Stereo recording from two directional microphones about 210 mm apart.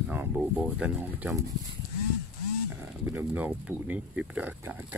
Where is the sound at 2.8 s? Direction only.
10° right (ahead or behind).